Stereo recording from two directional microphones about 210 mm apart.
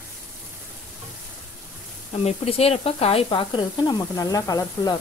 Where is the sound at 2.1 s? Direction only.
30° left (ahead or behind).